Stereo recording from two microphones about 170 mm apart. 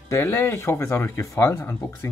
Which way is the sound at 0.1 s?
15° left (ahead or behind).